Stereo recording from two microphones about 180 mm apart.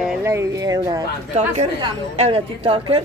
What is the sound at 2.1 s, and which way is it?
Speech, 35° right (ahead or behind).